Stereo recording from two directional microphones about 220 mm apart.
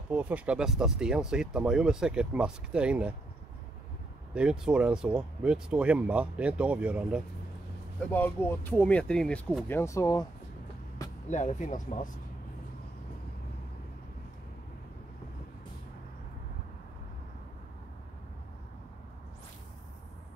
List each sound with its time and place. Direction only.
0.1 s speech: 5° right (ahead or behind)
4.3 s speech: 5° right (ahead or behind)
8.1 s speech: 10° left (ahead or behind)
11.2 s speech: 35° left (ahead or behind)